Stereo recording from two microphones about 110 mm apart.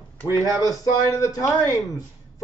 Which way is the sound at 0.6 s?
30° left (ahead or behind).